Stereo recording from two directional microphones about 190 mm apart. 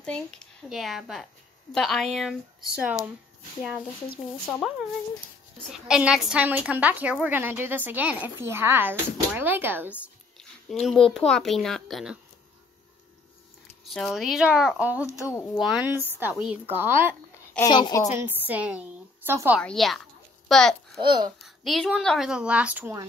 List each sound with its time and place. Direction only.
0.0 s a woman's voice: 5° left (ahead or behind)
4.5 s a woman's voice: centre (ahead or behind)
13.8 s a woman's voice: centre (ahead or behind)
17.6 s a woman's voice: 20° left (ahead or behind)
18.1 s a woman's voice: 10° right (ahead or behind)
19.6 s a woman's voice: centre (ahead or behind)
21.0 s a child's voice: 25° right (ahead or behind)
21.4 s a woman's voice: centre (ahead or behind)